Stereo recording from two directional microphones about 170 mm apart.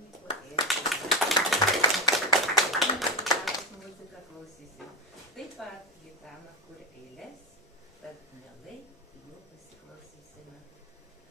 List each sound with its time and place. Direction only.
0.7 s clapping: centre (ahead or behind)
1.8 s clapping: 25° left (ahead or behind)
2.5 s clapping: centre (ahead or behind)
5.4 s a sound: 5° left (ahead or behind)